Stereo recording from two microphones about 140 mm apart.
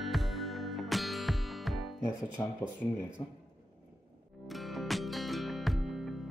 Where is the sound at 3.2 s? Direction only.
30° left (ahead or behind).